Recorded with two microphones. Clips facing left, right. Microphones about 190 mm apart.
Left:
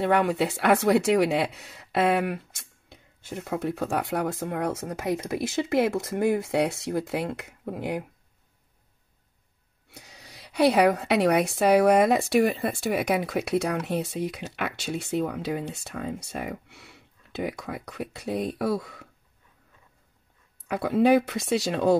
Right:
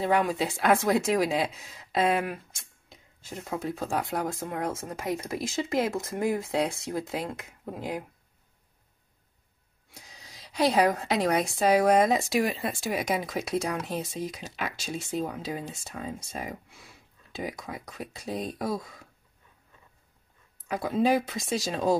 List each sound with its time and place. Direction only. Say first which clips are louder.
0.0 s speech: left 3 dB; 65° left (ahead or behind)
9.8 s a woman's voice: left 3 dB; 65° left (ahead or behind)
20.6 s a woman's voice: left 4 dB; 65° left (ahead or behind)